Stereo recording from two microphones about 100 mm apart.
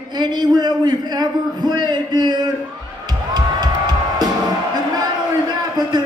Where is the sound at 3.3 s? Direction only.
40° right (ahead or behind).